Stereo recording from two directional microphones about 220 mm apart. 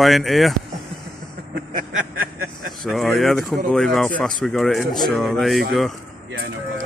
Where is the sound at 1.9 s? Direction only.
70° right (ahead or behind).